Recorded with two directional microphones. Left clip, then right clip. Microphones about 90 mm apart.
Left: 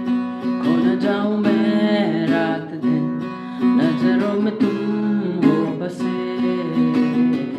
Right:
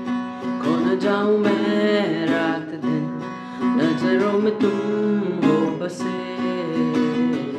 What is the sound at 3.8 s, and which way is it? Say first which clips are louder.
Music: right 2 dB; 25° right (ahead or behind).